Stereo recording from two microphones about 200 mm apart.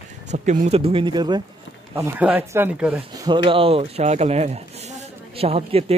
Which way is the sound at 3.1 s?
20° right (ahead or behind).